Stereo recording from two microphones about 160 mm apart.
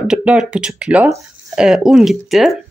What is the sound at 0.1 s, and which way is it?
Speech, 5° right (ahead or behind).